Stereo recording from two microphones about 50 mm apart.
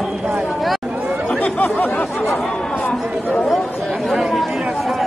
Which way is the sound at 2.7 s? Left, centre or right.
Left.